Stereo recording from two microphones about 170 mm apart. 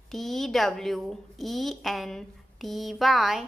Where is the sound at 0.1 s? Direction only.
Centre (ahead or behind).